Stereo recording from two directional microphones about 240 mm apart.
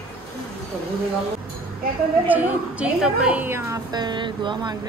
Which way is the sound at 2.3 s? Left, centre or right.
Centre.